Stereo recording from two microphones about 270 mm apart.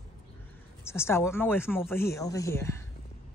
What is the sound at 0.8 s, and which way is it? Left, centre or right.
Speech, centre.